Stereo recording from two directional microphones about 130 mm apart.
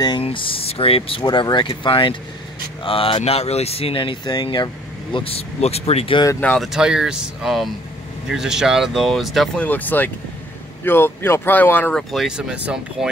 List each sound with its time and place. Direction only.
0.2 s speech: 45° left (ahead or behind)
5.1 s speech: 45° left (ahead or behind)
6.4 s speech: 10° left (ahead or behind)
6.7 s speech: 5° right (ahead or behind)
9.7 s speech: 15° left (ahead or behind)
11.9 s speech: centre (ahead or behind)